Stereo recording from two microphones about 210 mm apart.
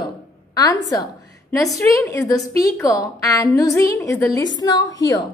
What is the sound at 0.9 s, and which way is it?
A woman's voice, 15° left (ahead or behind).